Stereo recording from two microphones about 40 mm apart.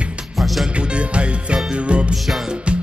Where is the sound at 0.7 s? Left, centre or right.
Right.